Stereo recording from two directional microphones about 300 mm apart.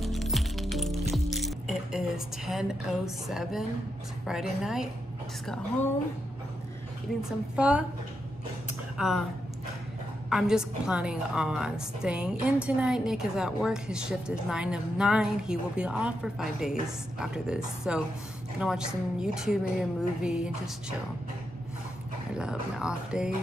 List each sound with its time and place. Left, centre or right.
0.0 s music: centre
4.3 s a woman's voice: centre
7.2 s a woman's voice: centre
8.9 s speech: centre
10.3 s a woman's voice: centre
22.4 s a woman's voice: centre